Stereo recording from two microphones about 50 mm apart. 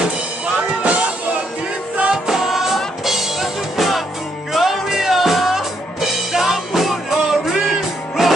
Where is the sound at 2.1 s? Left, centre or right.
Centre.